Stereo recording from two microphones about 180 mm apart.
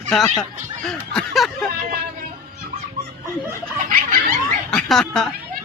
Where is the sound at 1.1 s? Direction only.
Centre (ahead or behind).